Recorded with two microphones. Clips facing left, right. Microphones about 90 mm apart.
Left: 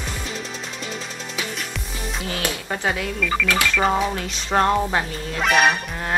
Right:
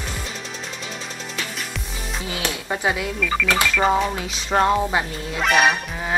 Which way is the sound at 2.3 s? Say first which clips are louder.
Right 1 dB; 10° right (ahead or behind).